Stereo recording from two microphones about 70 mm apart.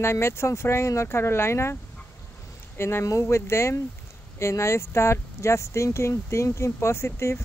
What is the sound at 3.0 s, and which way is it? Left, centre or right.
Speech, left.